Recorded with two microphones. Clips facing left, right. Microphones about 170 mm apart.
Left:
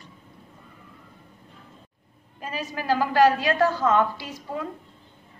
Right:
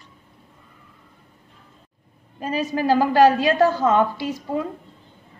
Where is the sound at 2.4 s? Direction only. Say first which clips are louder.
Right 6 dB; 30° right (ahead or behind).